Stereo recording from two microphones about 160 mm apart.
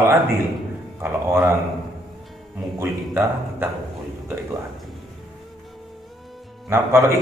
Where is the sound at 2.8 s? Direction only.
15° right (ahead or behind).